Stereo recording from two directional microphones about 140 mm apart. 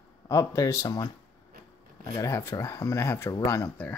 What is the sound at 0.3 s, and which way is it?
Speech, 20° left (ahead or behind).